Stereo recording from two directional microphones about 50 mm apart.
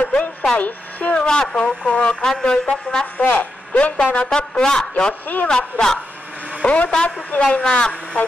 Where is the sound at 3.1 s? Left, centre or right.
Left.